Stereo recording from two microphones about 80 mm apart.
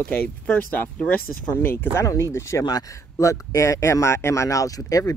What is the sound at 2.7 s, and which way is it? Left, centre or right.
Speech, left.